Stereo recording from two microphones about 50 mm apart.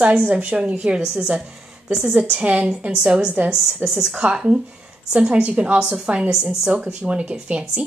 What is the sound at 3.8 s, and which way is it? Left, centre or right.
A woman's voice, right.